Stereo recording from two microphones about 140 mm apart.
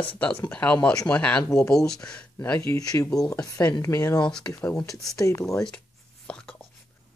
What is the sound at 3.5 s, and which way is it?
Speech, 15° left (ahead or behind).